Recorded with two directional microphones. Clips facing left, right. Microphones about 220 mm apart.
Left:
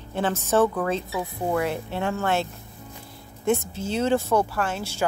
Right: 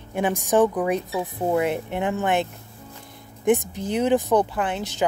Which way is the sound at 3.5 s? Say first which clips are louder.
Right 3 dB; 15° right (ahead or behind).